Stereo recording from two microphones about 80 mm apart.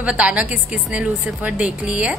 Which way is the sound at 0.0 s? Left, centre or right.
Centre.